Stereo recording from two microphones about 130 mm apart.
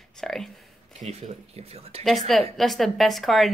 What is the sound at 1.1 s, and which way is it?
Speech, 50° right (ahead or behind).